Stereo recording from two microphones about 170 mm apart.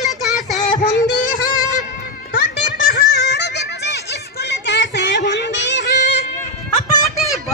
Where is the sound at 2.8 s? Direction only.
60° left (ahead or behind); by 6.0 s 90° left.